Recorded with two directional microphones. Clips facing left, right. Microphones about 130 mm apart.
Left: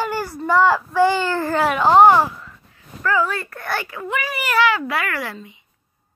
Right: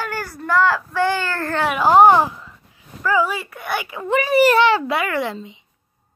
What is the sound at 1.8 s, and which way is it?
Speech, 10° right (ahead or behind).